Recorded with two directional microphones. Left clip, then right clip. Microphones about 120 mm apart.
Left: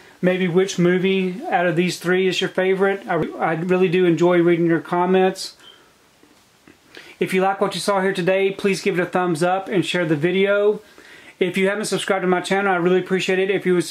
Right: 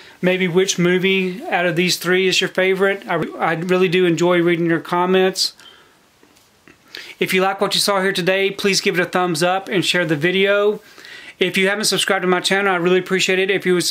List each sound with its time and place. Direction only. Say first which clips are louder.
0.2 s speech: right 2 dB; 20° right (ahead or behind)
6.9 s speech: right 3 dB; 20° right (ahead or behind)